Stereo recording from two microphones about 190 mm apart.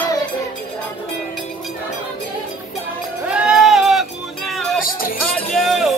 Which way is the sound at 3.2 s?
5° right (ahead or behind).